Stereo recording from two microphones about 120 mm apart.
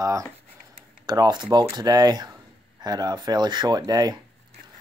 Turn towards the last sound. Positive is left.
turn(degrees=-35)  # may be behind; listen again after turning